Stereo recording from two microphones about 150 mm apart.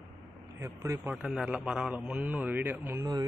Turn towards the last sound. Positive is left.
turn(degrees=-20)  # may be behind; listen again after turning